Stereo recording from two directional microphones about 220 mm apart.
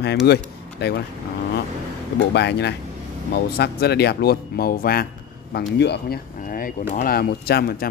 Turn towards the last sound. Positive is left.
turn(degrees=45)  # may be behind; listen again after turning